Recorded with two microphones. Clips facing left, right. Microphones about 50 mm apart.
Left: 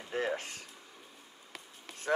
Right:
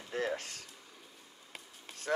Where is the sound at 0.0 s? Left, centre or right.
Left.